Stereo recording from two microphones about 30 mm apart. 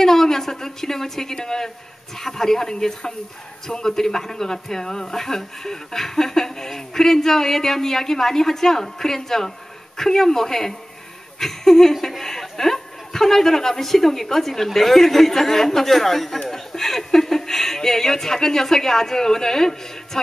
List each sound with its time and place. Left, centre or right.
0.0 s speech: centre
11.9 s speech: centre
12.2 s speech: centre